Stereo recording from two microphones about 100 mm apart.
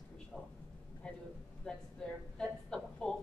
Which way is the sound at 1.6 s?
10° left (ahead or behind).